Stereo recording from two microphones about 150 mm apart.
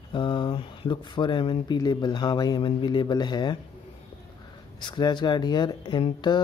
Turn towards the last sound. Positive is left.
turn(degrees=30)  # may be behind; listen again after turning